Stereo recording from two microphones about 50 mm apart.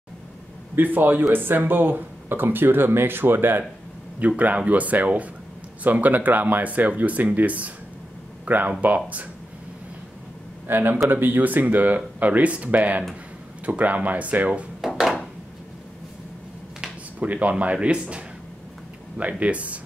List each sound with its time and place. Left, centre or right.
0.9 s speech: right
4.4 s speech: right
10.7 s speech: right
14.8 s a sound: centre
17.2 s speech: right